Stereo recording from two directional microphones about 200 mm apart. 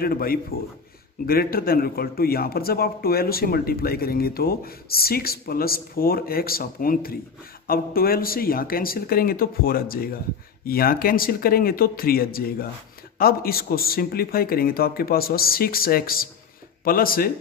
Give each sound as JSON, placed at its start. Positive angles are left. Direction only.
{"t": 0.0, "sound": "a man's voice", "side_deg": 50}